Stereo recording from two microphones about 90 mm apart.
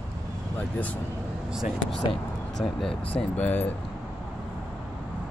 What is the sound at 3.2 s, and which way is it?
Speech, 15° left (ahead or behind).